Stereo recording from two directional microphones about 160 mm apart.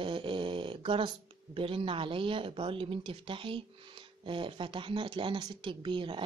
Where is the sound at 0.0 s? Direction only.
30° right (ahead or behind).